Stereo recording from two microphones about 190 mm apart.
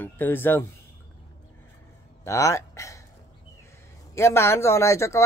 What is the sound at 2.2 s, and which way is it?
Speech, 15° left (ahead or behind).